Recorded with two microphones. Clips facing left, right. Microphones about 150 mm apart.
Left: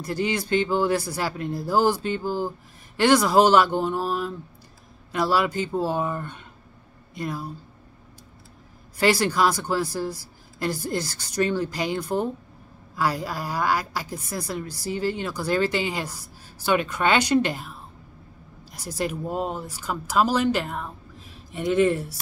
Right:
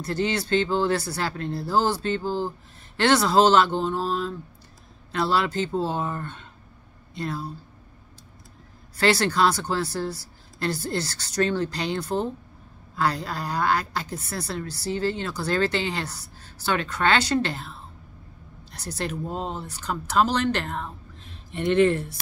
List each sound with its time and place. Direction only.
0.0 s speech: 10° left (ahead or behind)
8.9 s speech: 10° left (ahead or behind)